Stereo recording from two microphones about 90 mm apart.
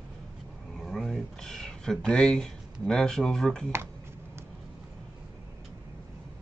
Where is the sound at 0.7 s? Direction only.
5° left (ahead or behind).